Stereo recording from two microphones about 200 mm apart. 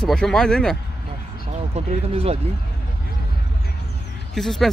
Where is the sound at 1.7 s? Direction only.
30° right (ahead or behind).